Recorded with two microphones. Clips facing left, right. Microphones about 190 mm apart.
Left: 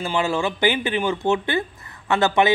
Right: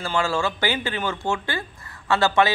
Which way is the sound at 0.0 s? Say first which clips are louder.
Left 2 dB; 20° left (ahead or behind).